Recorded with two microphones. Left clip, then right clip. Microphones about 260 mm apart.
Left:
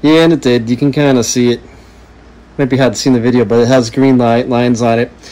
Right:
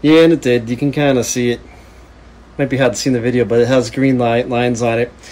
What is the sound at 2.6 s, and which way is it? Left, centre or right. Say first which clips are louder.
Speech: left 3 dB; left.